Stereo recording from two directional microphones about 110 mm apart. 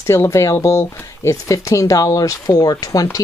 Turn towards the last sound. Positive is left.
turn(degrees=35)  # may be behind; listen again after turning